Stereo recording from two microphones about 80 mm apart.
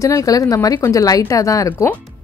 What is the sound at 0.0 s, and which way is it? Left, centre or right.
A woman's voice, left.